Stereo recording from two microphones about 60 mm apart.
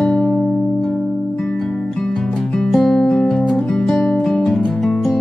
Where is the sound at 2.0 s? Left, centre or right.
Centre.